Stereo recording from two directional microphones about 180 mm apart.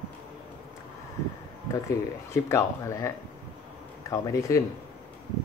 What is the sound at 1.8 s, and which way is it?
Speech, 15° left (ahead or behind).